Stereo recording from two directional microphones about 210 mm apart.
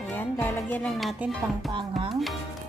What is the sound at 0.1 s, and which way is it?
Music, 10° left (ahead or behind).